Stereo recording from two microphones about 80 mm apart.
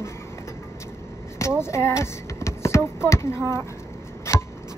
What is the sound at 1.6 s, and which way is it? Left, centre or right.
Speech, left.